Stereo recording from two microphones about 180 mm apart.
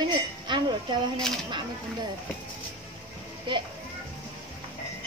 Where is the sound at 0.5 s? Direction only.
25° right (ahead or behind).